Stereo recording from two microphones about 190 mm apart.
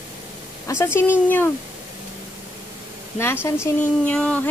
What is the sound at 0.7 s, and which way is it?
Speech, 15° left (ahead or behind).